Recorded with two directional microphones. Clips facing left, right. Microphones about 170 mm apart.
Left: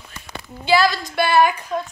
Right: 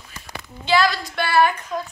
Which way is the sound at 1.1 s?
20° left (ahead or behind).